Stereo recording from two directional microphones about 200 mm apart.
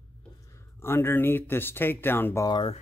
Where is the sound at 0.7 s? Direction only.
10° left (ahead or behind).